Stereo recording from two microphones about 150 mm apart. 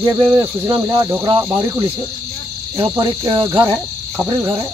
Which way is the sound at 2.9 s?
25° right (ahead or behind).